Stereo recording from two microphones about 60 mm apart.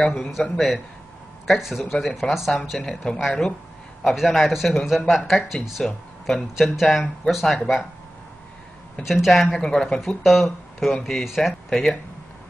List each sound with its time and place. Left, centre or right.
0.1 s speech: centre
9.0 s speech: centre
9.6 s speech: centre
9.9 s speech: centre
11.0 s speech: centre
11.2 s speech: centre